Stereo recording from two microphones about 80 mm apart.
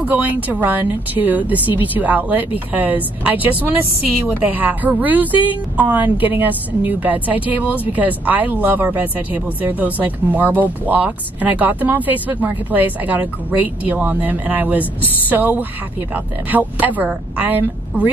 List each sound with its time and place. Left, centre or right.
0.0 s speech: right